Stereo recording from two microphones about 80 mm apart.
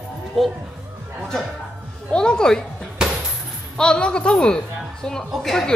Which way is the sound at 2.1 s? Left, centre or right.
Centre.